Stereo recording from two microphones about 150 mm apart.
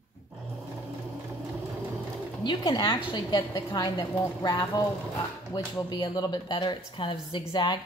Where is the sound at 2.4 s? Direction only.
30° left (ahead or behind).